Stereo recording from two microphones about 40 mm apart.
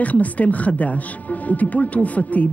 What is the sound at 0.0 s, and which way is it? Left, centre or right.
Speech, left.